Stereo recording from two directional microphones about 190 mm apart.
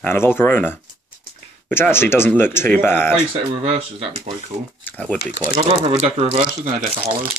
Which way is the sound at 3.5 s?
30° right (ahead or behind).